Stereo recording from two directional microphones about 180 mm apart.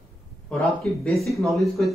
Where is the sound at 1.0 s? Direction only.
Centre (ahead or behind).